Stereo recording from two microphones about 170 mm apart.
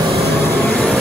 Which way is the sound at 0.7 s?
10° left (ahead or behind).